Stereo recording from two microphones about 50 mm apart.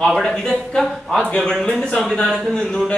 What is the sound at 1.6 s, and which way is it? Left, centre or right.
A man's voice, left.